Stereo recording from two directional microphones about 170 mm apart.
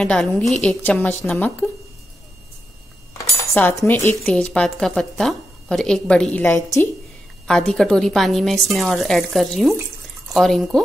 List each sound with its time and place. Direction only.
0.0 s a woman's voice: 5° left (ahead or behind)
3.3 s cutlery: 15° left (ahead or behind)
4.2 s a woman's voice: 5° left (ahead or behind)
6.5 s a woman's voice: 15° left (ahead or behind)
7.4 s a woman's voice: 5° left (ahead or behind)